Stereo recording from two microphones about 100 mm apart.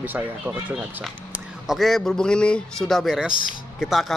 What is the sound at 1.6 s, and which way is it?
Speech, centre (ahead or behind).